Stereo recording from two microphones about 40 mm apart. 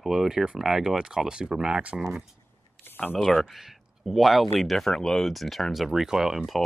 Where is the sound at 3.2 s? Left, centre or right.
Centre.